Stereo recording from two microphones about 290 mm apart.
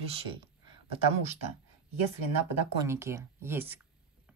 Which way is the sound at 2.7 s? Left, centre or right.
Centre.